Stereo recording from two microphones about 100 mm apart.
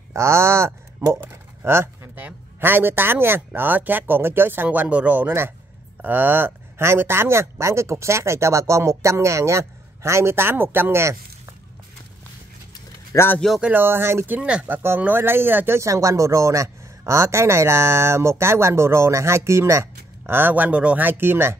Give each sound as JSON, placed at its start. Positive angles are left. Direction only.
{"t": 0.1, "sound": "speech", "side_deg": -25}
{"t": 13.1, "sound": "speech", "side_deg": 25}
{"t": 13.6, "sound": "speech", "side_deg": -20}